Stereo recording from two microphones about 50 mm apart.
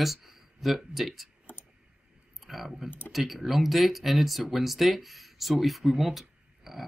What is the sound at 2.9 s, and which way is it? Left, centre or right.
Speech, left.